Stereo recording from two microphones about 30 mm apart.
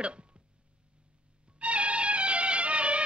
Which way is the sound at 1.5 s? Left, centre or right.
Right.